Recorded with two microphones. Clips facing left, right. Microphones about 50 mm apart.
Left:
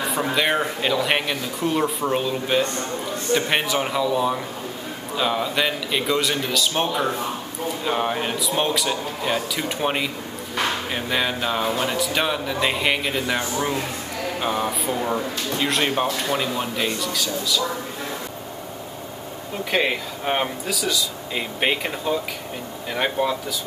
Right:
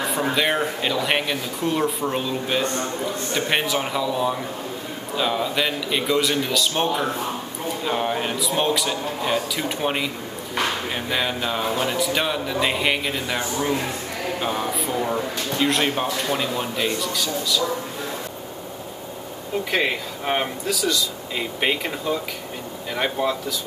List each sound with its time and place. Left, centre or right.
0.1 s speech: centre
10.6 s music: centre
11.8 s speech: centre
19.7 s speech: centre
22.9 s speech: centre